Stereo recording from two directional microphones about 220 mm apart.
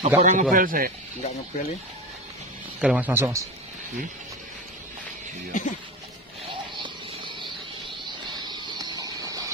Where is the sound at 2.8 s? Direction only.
5° right (ahead or behind).